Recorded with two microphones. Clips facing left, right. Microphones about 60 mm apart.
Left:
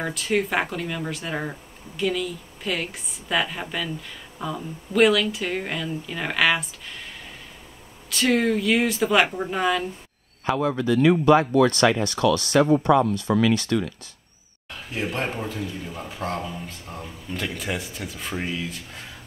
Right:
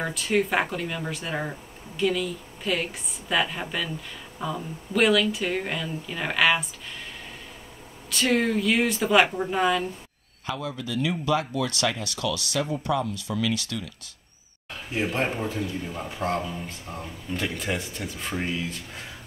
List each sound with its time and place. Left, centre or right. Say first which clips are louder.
0.0 s speech: even; centre
8.1 s speech: left 2 dB; centre
10.8 s speech: left 11 dB; left
14.7 s speech: right 1 dB; centre